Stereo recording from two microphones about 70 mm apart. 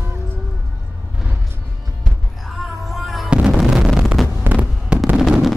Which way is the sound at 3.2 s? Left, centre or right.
Centre.